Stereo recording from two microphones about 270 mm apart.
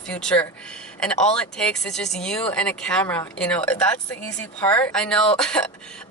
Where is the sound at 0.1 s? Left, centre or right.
Centre.